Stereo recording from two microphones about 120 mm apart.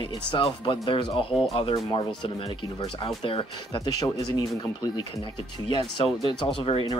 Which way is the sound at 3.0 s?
50° left (ahead or behind).